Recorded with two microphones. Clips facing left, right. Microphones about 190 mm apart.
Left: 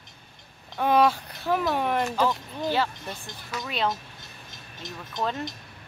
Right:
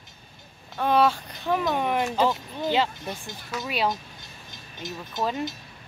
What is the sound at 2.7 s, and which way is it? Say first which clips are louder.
Speech: right 3 dB; 20° right (ahead or behind).